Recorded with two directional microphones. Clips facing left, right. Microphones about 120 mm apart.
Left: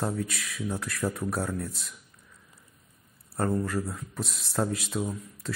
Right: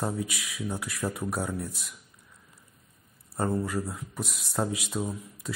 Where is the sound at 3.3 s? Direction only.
5° right (ahead or behind).